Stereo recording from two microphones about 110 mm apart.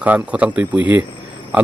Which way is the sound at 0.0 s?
15° right (ahead or behind).